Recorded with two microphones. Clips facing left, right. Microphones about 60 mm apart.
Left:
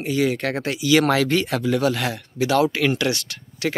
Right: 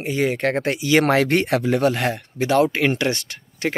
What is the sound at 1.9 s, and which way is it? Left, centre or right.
Speech, right.